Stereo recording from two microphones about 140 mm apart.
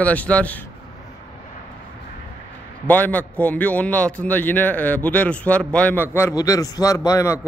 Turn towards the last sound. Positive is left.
turn(degrees=20)  # may be behind; listen again after turning